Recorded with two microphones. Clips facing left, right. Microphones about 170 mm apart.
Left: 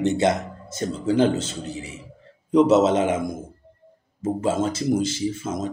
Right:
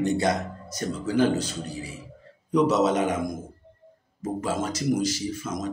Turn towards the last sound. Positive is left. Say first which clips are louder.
# left 4 dB
turn(degrees=25)  # may be behind; listen again after turning